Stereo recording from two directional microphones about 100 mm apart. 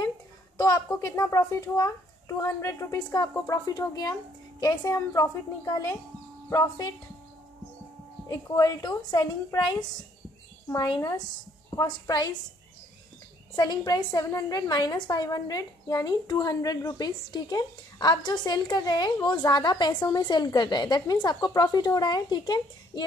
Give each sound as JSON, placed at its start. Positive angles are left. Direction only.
{"t": 0.6, "sound": "a sound", "side_deg": 35}
{"t": 1.2, "sound": "a woman's voice", "side_deg": 30}
{"t": 8.3, "sound": "a woman's voice", "side_deg": 40}
{"t": 11.0, "sound": "a woman's voice", "side_deg": 35}
{"t": 13.6, "sound": "a woman's voice", "side_deg": 45}